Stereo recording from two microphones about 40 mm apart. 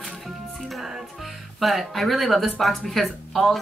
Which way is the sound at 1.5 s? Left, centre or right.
Centre.